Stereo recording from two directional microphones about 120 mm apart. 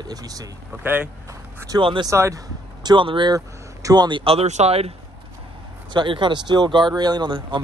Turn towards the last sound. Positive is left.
turn(degrees=-40)  # may be behind; listen again after turning